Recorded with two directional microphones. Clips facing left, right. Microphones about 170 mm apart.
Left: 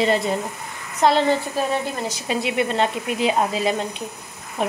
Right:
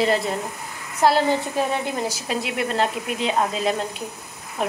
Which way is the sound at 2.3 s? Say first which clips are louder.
Left 5 dB; centre (ahead or behind).